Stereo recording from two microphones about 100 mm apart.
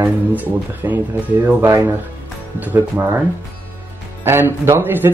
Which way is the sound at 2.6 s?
20° right (ahead or behind).